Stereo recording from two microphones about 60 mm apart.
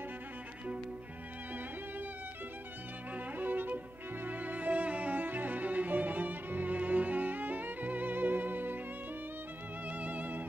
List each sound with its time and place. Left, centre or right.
3.3 s music: right
9.8 s music: right